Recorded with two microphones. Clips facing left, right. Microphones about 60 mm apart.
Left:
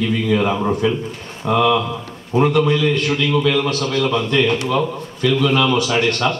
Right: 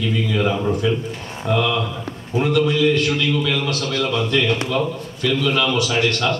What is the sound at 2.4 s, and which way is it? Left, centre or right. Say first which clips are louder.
A man's voice: left 2 dB; left.